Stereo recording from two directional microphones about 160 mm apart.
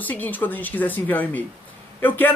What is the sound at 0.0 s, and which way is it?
A man's voice, 10° left (ahead or behind).